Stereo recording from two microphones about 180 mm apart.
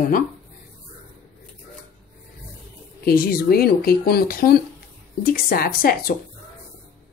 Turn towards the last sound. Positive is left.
turn(degrees=55)  # may be behind; listen again after turning